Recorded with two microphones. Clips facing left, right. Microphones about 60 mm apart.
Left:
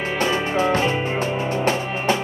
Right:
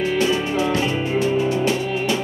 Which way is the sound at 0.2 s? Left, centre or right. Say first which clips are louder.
Even; left.